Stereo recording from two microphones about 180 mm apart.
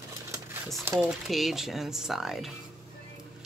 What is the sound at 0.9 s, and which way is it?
Speech, 5° right (ahead or behind).